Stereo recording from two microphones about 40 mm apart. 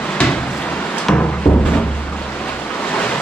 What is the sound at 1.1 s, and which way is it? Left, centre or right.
Music, left.